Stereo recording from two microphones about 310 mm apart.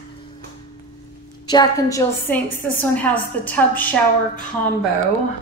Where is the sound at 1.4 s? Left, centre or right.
Centre.